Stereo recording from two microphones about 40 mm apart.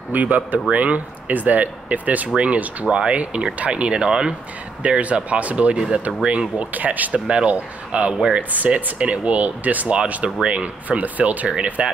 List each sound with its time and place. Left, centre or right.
0.1 s speech: right; by 4.4 s centre
4.8 s speech: right
7.2 s speech: right